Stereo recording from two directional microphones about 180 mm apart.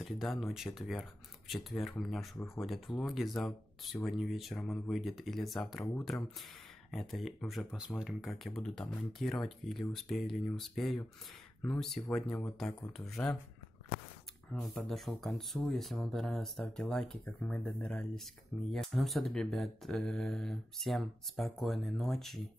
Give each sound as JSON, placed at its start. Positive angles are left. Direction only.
{"t": 0.0, "sound": "speech", "side_deg": 0}
{"t": 6.9, "sound": "speech", "side_deg": 0}
{"t": 14.5, "sound": "speech", "side_deg": 0}